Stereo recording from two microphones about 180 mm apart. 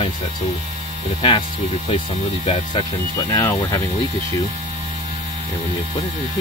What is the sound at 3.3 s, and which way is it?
Speech, 15° left (ahead or behind).